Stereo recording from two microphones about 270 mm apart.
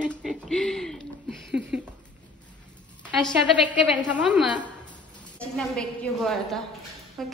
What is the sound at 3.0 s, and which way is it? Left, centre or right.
A woman's voice, centre.